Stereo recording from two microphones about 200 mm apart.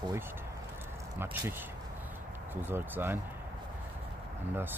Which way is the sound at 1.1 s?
10° right (ahead or behind).